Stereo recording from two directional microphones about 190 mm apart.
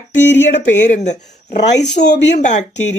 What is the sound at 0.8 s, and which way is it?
Speech, 40° left (ahead or behind).